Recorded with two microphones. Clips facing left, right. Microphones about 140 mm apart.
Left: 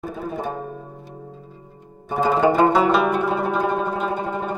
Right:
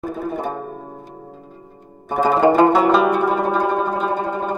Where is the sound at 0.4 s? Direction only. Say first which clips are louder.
Right 2 dB; 45° right (ahead or behind).